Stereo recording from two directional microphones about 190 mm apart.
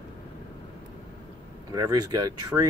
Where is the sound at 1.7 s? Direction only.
20° right (ahead or behind).